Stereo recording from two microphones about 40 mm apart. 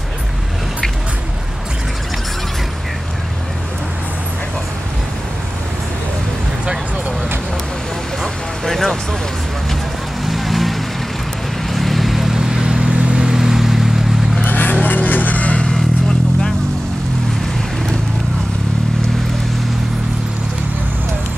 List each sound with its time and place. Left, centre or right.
8.6 s a sound: centre
10.2 s vehicle: centre
12.4 s vehicle: centre
14.4 s vehicle: left